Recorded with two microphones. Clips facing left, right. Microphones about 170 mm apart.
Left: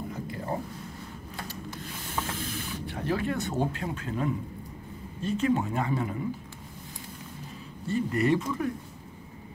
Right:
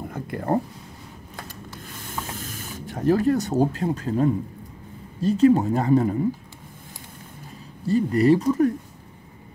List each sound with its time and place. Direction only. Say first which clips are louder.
0.1 s a sound: right 12 dB; 60° right (ahead or behind)
2.2 s spray: left 1 dB; 45° right (ahead or behind)
5.2 s speech: right 9 dB; 35° right (ahead or behind)
7.8 s speech: right 7 dB; 35° right (ahead or behind)